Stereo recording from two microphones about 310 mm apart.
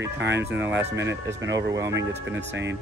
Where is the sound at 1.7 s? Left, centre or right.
Centre.